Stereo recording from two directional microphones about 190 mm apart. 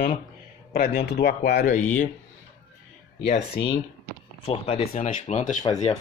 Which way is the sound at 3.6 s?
65° left (ahead or behind).